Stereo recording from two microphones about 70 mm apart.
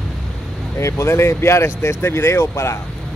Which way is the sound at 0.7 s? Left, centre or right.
Left.